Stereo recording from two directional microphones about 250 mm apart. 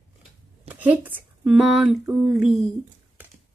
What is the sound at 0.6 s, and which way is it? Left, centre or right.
Speech, centre.